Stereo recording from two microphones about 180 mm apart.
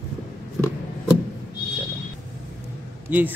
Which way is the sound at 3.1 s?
10° right (ahead or behind).